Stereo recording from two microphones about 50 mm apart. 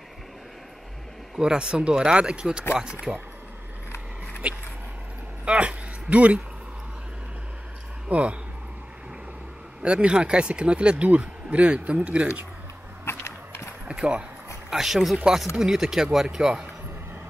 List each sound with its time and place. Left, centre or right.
1.4 s speech: centre
3.1 s speech: right
4.4 s a sound: right
8.1 s speech: right
9.8 s speech: centre
13.0 s a sound: left
13.8 s speech: right
14.7 s speech: centre